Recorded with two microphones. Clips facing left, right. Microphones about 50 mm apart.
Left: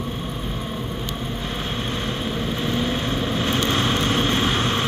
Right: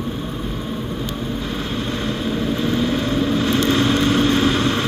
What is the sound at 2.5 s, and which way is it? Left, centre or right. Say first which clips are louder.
Vehicle: right 4 dB; left.